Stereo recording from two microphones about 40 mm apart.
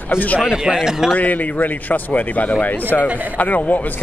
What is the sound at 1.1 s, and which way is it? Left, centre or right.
Speech, left.